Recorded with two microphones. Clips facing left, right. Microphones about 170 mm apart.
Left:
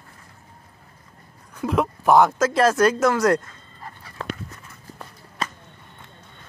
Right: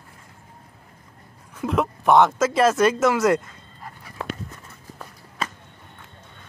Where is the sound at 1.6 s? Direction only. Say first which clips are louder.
Left 1 dB; centre (ahead or behind).